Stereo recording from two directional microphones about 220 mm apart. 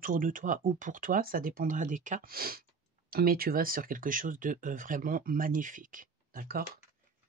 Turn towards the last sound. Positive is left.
turn(degrees=-40)  # may be behind; listen again after turning